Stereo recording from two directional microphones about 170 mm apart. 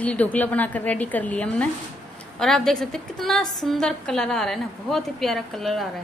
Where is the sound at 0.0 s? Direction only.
10° left (ahead or behind).